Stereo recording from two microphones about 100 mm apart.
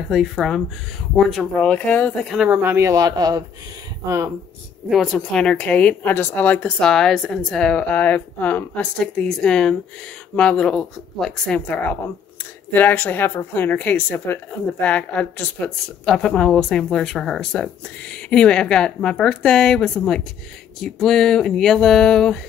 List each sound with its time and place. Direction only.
0.4 s speech: centre (ahead or behind)
1.6 s a woman's voice: 15° left (ahead or behind)
2.2 s speech: 5° right (ahead or behind)
2.5 s speech: 20° right (ahead or behind)
2.9 s speech: 40° right (ahead or behind)
4.8 s a woman's voice: centre (ahead or behind)